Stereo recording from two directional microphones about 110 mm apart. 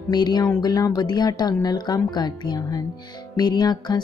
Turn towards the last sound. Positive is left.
turn(degrees=40)  # may be behind; listen again after turning